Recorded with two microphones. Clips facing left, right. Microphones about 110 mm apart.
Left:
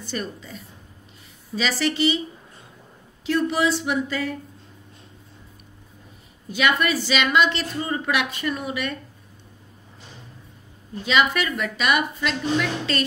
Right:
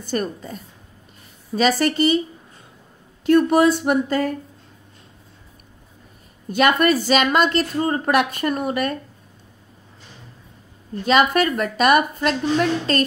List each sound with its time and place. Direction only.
0.0 s a woman's voice: 45° right (ahead or behind)
3.3 s a woman's voice: 50° right (ahead or behind)
6.5 s a woman's voice: 45° right (ahead or behind)
11.1 s a woman's voice: 45° right (ahead or behind)